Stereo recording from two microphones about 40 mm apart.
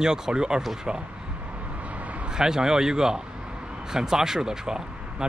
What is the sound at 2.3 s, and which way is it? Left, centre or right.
Speech, centre.